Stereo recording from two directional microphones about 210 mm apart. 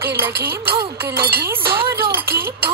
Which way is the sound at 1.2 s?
50° right (ahead or behind).